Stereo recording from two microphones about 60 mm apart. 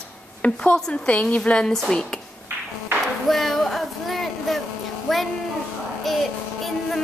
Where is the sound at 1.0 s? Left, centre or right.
Left.